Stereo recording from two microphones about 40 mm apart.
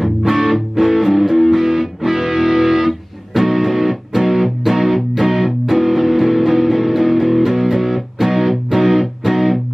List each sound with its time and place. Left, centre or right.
0.0 s music: centre